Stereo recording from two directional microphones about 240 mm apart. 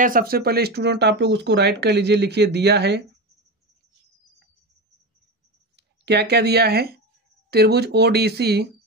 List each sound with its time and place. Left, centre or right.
0.0 s speech: right
5.8 s speech: right